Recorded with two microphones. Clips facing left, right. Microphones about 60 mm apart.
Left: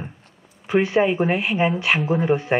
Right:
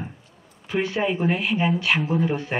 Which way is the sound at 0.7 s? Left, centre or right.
Left.